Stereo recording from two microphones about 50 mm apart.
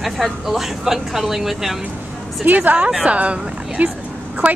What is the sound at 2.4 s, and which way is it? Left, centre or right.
A woman's voice, right.